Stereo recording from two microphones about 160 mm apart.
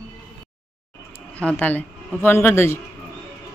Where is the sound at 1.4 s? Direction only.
10° left (ahead or behind).